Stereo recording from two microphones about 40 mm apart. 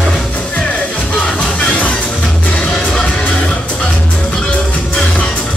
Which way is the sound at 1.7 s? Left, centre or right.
Left.